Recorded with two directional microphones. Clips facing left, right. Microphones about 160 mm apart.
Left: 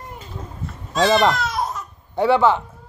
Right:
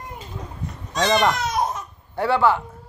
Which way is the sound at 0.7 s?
20° right (ahead or behind).